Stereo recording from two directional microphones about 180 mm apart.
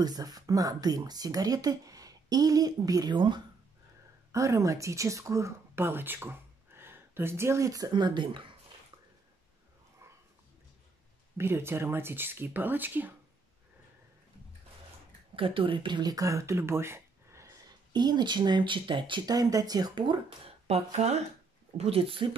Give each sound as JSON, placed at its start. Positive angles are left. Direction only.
{"t": 0.0, "sound": "speech", "side_deg": -20}
{"t": 11.3, "sound": "speech", "side_deg": -15}
{"t": 15.3, "sound": "speech", "side_deg": -30}